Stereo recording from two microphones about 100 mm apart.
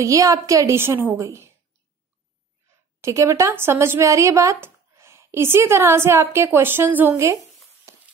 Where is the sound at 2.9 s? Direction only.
30° right (ahead or behind).